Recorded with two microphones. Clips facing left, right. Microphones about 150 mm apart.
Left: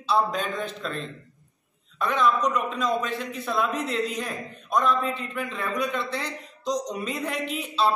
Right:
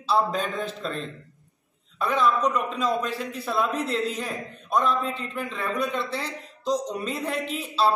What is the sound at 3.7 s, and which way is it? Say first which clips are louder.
Speech: right 1 dB; 30° right (ahead or behind).